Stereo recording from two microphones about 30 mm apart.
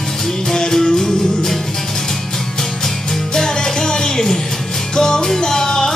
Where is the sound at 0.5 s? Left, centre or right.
Centre.